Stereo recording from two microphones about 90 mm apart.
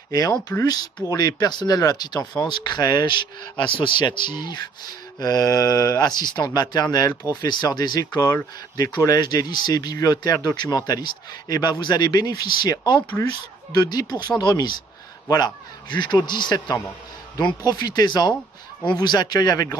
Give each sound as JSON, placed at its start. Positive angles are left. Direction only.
{"t": 0.1, "sound": "speech", "side_deg": 40}
{"t": 5.2, "sound": "speech", "side_deg": 45}